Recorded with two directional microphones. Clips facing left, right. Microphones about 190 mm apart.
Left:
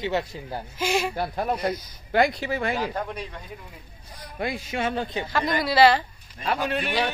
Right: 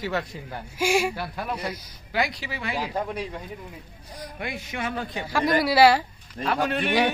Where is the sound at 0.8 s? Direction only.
10° right (ahead or behind).